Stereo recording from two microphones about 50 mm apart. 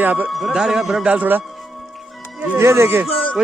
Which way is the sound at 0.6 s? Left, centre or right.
Centre.